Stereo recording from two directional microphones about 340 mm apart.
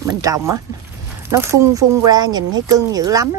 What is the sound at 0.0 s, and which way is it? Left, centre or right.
Speech, centre.